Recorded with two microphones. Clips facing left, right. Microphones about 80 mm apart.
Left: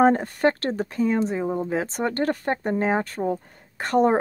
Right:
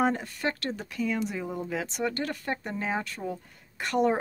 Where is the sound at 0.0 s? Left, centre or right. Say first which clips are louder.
Left 9 dB; left.